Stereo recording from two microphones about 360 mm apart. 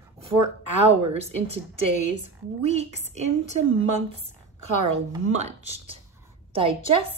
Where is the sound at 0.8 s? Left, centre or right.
Centre.